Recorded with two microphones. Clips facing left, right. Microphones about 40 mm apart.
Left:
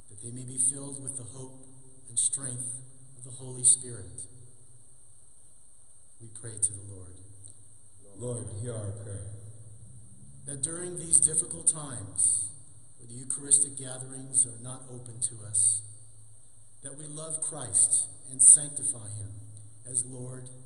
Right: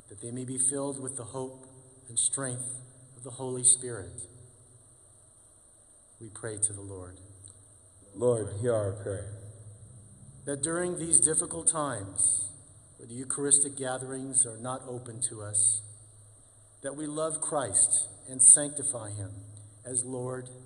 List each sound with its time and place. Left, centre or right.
0.1 s a man's voice: right
6.3 s a man's voice: right
10.4 s a man's voice: right
16.8 s a man's voice: right